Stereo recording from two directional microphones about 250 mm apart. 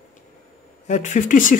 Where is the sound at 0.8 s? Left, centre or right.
Left.